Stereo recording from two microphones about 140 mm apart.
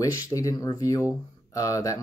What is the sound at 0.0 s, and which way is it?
Speech, 25° left (ahead or behind).